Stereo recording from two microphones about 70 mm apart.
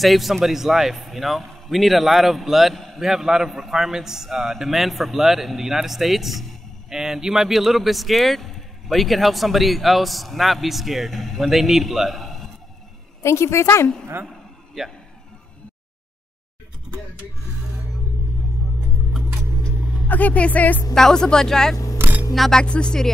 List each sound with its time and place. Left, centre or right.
0.0 s a man's voice: centre
13.2 s a woman's voice: left
14.2 s a sound: centre
20.1 s speech: left
20.9 s speech: centre
21.9 s camera: right
22.3 s speech: centre